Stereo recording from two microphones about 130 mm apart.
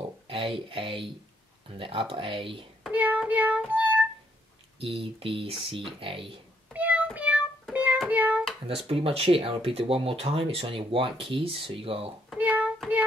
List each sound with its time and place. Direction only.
0.3 s speech: 45° right (ahead or behind)
2.9 s child singing: 10° right (ahead or behind)
3.7 s music: 10° right (ahead or behind)
4.7 s speech: 45° right (ahead or behind)
6.7 s music: 10° right (ahead or behind)
8.1 s hands: 10° right (ahead or behind)
8.6 s speech: 45° right (ahead or behind)
12.4 s child singing: 10° right (ahead or behind)